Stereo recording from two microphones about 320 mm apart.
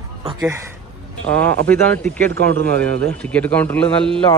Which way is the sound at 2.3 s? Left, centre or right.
Right.